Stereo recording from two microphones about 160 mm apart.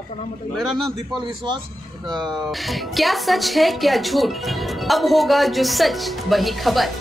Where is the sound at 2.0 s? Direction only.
25° right (ahead or behind).